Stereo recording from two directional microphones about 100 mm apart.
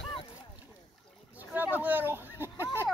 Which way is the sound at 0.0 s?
65° left (ahead or behind).